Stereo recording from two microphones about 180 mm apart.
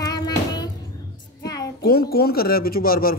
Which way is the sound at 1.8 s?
60° left (ahead or behind).